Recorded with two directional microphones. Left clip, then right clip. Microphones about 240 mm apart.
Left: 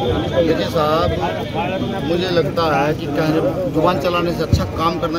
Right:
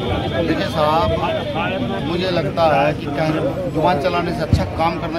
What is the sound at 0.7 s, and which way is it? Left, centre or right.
Speech, centre.